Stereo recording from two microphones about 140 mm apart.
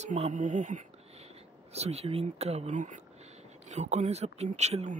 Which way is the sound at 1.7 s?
50° right (ahead or behind).